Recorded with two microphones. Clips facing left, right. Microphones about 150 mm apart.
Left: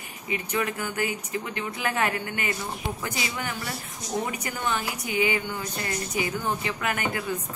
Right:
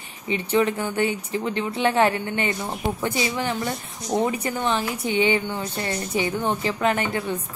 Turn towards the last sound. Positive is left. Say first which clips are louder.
# right 5 dB
turn(degrees=-30)  # may be behind; listen again after turning